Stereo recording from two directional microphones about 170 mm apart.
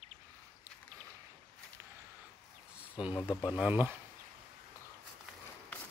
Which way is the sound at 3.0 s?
5° right (ahead or behind).